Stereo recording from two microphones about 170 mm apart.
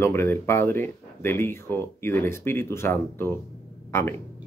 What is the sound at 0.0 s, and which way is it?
Speech, 15° left (ahead or behind).